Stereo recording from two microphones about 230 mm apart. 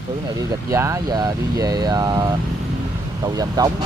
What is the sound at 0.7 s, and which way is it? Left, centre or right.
Speech, centre.